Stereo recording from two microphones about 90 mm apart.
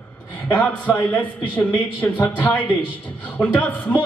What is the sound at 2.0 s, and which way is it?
A man's voice, 15° left (ahead or behind).